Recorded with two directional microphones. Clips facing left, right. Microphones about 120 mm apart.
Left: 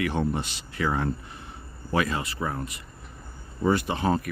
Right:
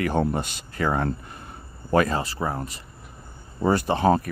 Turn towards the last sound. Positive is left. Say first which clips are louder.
# right 4 dB
turn(degrees=-35)  # may be behind; listen again after turning